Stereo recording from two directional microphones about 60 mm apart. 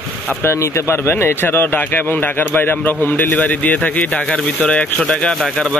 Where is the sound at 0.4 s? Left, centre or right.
Left.